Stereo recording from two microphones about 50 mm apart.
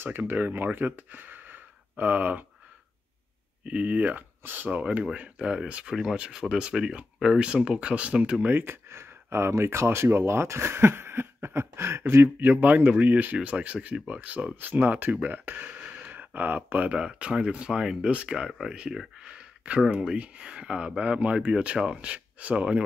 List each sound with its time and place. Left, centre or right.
0.3 s speech: right
3.6 s speech: right
4.4 s speech: right
4.6 s speech: right
5.9 s speech: centre
8.5 s speech: right
12.4 s speech: right
15.5 s a sound: right
16.1 s speech: right
16.9 s speech: right